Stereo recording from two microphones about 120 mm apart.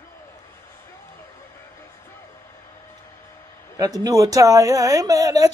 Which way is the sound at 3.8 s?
30° right (ahead or behind).